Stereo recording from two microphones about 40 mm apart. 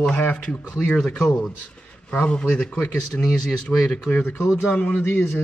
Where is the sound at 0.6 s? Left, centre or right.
Left.